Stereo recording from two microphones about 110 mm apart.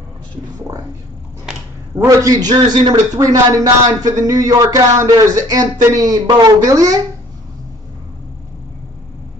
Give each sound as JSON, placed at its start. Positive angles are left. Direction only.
{"t": 2.0, "sound": "a man's voice", "side_deg": -35}